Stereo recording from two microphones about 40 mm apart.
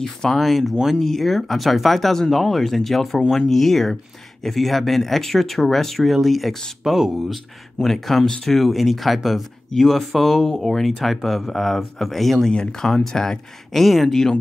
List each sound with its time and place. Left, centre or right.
0.3 s speech: centre
0.9 s speech: centre
12.4 s speech: centre